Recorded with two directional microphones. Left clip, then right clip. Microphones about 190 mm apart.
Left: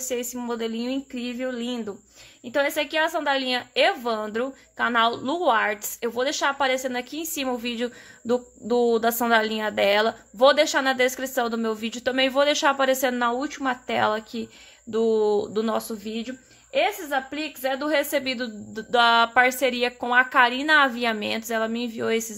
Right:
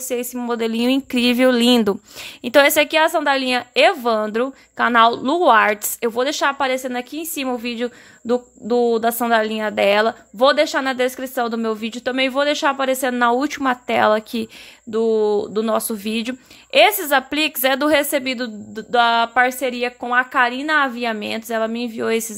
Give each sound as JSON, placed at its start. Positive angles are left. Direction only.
{"t": 0.1, "sound": "a woman's voice", "side_deg": -30}
{"t": 14.9, "sound": "a woman's voice", "side_deg": -20}
{"t": 15.9, "sound": "a woman's voice", "side_deg": -40}